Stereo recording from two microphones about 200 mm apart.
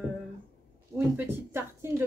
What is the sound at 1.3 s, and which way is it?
Speech, 10° right (ahead or behind).